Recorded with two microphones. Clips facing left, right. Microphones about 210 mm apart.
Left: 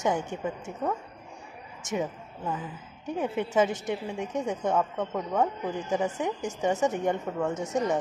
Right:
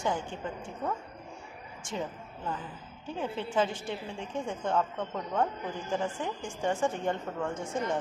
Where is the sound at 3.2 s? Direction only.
20° left (ahead or behind).